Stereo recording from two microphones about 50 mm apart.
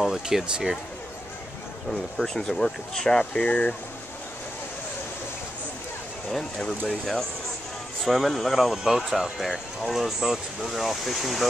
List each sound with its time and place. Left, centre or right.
0.0 s speech: centre
1.9 s speech: centre
3.3 s speech: left
8.0 s speech: centre